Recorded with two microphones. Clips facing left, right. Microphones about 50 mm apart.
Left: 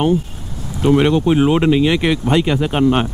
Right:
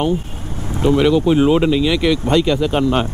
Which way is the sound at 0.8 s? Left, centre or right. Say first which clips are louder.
Even; left.